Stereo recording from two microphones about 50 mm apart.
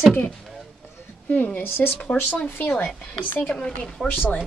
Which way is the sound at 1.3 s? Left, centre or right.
Left.